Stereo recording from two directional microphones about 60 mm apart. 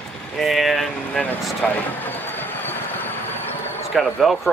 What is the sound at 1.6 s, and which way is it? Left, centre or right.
Vehicle, left.